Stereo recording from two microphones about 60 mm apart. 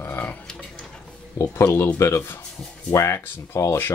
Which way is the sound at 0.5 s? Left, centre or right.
Centre.